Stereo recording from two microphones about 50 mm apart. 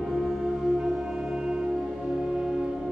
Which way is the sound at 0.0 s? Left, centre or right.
Centre.